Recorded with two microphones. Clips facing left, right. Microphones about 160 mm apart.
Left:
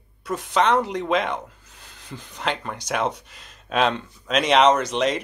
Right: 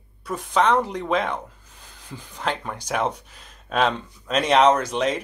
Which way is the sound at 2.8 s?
Centre (ahead or behind).